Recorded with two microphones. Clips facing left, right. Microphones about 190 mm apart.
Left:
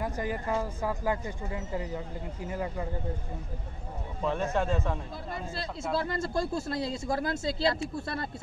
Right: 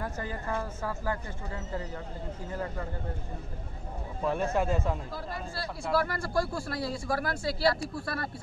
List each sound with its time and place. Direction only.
0.0 s speech: 15° left (ahead or behind)
4.2 s speech: 5° right (ahead or behind)
5.1 s speech: 20° left (ahead or behind)